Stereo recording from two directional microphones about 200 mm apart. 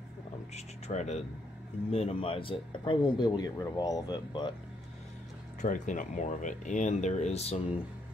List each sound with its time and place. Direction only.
0.6 s speech: 35° left (ahead or behind)
5.6 s speech: 40° left (ahead or behind)